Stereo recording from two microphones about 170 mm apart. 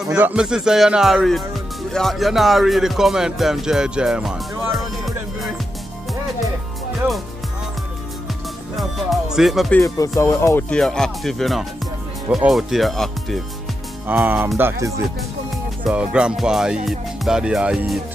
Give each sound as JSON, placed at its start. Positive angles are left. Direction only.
{"t": 0.1, "sound": "speech", "side_deg": -5}
{"t": 4.7, "sound": "music", "side_deg": 0}
{"t": 8.7, "sound": "speech", "side_deg": 0}
{"t": 9.8, "sound": "music", "side_deg": 20}
{"t": 10.7, "sound": "speech", "side_deg": 5}
{"t": 14.0, "sound": "speech", "side_deg": -10}
{"t": 15.9, "sound": "speech", "side_deg": -5}